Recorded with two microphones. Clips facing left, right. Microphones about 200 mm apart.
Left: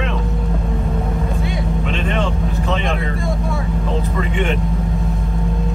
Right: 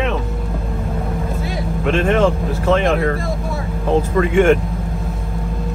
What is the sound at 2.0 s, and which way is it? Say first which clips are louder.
Speech: right 7 dB; 90° right.